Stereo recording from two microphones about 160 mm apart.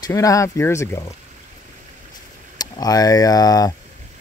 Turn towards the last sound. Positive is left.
turn(degrees=25)  # may be behind; listen again after turning